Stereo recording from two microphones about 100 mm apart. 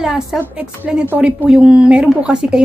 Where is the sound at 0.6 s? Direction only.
10° right (ahead or behind).